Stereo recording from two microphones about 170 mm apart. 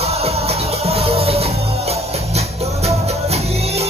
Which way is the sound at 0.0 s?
35° right (ahead or behind).